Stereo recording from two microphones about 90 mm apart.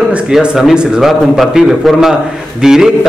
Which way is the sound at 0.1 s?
10° right (ahead or behind).